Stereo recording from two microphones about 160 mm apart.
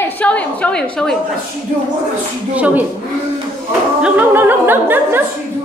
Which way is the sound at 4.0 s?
10° right (ahead or behind).